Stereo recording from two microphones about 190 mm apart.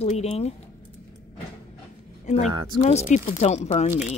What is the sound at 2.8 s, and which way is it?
Speech, 40° left (ahead or behind).